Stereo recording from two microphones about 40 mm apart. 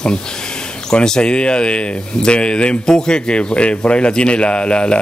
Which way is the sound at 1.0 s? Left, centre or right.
Centre.